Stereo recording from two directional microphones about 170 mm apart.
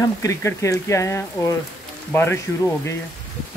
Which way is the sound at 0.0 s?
20° left (ahead or behind).